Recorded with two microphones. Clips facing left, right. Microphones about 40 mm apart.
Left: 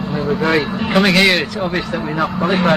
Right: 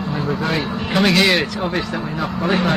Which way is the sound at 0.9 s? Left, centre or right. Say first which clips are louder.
Left 2 dB; centre.